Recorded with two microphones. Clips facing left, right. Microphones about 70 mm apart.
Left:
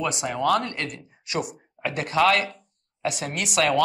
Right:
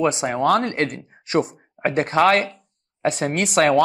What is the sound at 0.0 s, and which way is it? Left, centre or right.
A woman's voice, right.